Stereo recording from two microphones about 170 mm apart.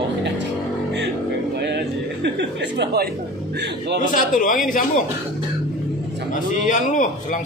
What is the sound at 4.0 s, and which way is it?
A man's voice, 50° left (ahead or behind).